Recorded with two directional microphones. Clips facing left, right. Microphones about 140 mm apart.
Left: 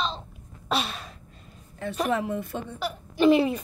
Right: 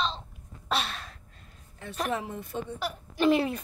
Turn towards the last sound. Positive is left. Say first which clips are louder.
# left 4 dB
turn(degrees=0)  # may be behind; listen again after turning